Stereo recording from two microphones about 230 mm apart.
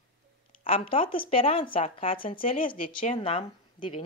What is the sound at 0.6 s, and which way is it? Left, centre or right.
Speech, left.